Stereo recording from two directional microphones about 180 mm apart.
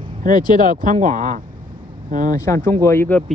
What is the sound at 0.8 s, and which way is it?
Speech, 45° right (ahead or behind).